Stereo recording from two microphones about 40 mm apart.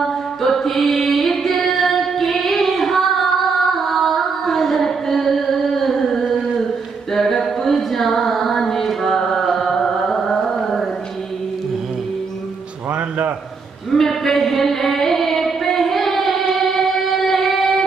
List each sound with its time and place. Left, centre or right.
0.4 s music: centre
7.2 s carnatic music: centre
13.9 s a sound: centre